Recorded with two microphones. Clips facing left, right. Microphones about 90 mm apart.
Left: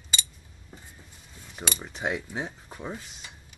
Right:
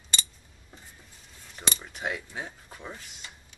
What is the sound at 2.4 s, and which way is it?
Speech, 15° left (ahead or behind).